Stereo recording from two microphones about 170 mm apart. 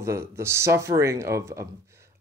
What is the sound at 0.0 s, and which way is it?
Speech, 15° right (ahead or behind).